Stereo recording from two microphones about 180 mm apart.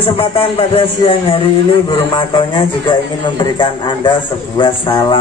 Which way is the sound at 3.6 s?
25° left (ahead or behind).